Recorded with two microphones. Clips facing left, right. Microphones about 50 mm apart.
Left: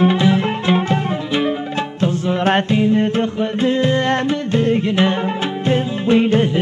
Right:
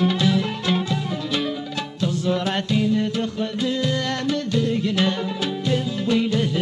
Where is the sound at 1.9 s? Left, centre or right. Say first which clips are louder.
Left 3 dB; left.